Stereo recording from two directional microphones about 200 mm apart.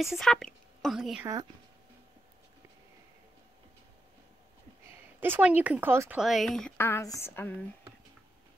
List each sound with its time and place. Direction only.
0.0 s a woman's voice: centre (ahead or behind)
1.2 s speech: 15° right (ahead or behind)
5.2 s speech: 10° right (ahead or behind); by 7.5 s 10° left (ahead or behind)